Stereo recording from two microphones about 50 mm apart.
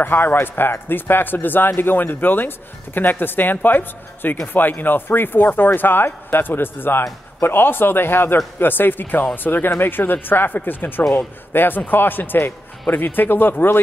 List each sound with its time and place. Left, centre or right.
0.0 s a man's voice: left